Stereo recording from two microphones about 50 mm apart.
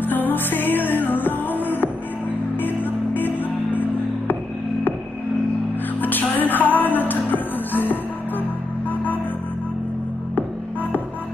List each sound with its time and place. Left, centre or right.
0.0 s music: left
2.6 s music: left
6.0 s music: left